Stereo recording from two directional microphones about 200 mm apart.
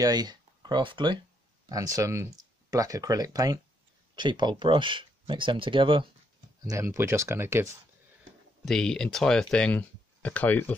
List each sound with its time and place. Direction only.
0.0 s speech: 20° right (ahead or behind)
8.6 s speech: 5° left (ahead or behind)